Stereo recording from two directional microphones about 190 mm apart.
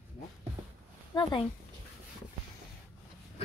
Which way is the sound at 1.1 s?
25° left (ahead or behind).